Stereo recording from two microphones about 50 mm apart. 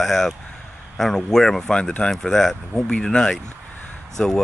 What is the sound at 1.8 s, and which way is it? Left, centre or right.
Speech, centre.